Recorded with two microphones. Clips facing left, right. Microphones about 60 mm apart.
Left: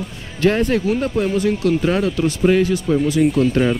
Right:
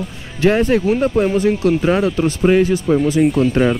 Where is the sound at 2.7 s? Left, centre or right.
Right.